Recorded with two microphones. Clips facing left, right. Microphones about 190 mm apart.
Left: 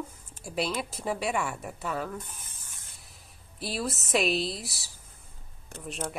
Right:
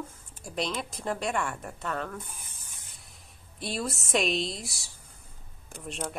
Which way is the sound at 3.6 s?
Centre (ahead or behind).